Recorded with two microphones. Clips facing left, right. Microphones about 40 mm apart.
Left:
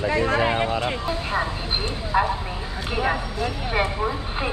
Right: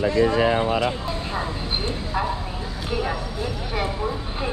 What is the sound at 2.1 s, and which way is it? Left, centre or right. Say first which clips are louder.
Speech: left 5 dB; centre.